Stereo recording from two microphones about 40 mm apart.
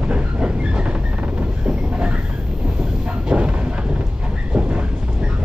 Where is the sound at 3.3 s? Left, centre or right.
Right.